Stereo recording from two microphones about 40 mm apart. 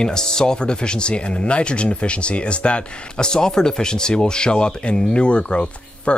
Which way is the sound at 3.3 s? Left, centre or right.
Centre.